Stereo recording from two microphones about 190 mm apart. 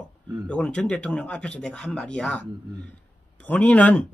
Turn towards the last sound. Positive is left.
turn(degrees=5)  # may be behind; listen again after turning